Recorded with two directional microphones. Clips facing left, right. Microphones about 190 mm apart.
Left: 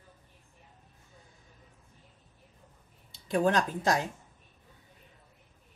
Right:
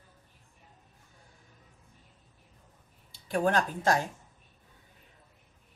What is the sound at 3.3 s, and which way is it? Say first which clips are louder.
Speech: left 1 dB; 20° left (ahead or behind).